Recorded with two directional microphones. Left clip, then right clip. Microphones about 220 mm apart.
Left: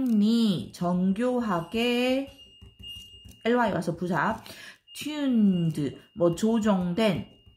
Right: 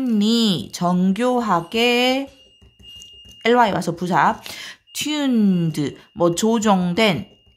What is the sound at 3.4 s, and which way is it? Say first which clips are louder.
Speech: right 9 dB; 50° right (ahead or behind).